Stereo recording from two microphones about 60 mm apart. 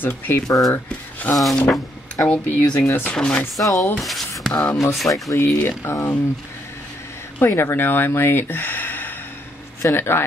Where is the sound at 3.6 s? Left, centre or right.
Left.